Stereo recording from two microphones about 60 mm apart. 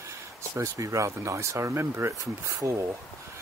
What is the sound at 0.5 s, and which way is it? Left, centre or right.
Speech, right.